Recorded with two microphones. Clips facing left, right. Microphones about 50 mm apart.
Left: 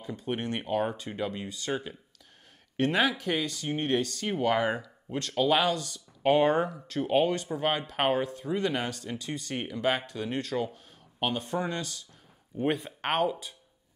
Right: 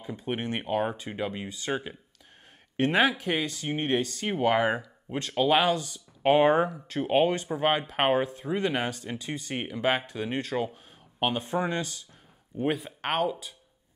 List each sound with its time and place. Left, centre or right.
0.0 s speech: centre
12.5 s speech: centre